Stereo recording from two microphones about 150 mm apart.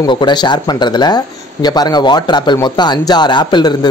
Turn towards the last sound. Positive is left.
turn(degrees=30)  # may be behind; listen again after turning